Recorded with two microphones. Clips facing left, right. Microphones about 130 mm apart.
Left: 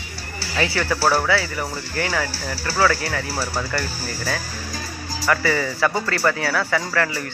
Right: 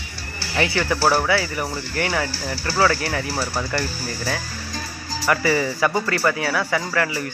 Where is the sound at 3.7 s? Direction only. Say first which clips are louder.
Right 1 dB; 25° right (ahead or behind).